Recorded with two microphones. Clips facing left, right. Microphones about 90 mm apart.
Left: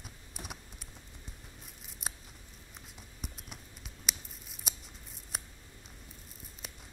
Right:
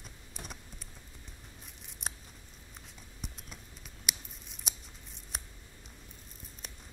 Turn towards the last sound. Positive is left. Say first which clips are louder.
# left 1 dB
turn(degrees=0)  # may be behind; listen again after turning